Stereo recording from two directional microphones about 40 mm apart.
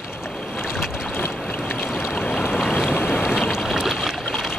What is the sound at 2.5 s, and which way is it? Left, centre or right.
Boat, centre.